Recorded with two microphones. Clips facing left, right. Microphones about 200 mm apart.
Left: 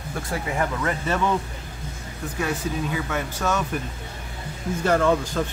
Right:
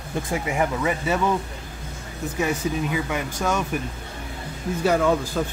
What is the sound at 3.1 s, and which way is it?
Speech, 10° right (ahead or behind).